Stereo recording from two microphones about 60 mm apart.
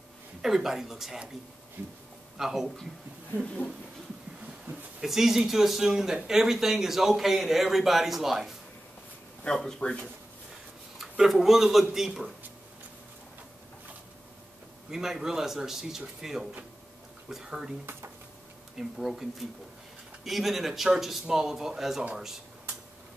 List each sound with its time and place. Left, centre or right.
0.4 s speech: centre
1.8 s speech: right
2.3 s a man's voice: centre
5.0 s a man's voice: centre
9.4 s speech: centre
11.0 s a man's voice: centre
14.9 s a man's voice: centre
18.8 s speech: centre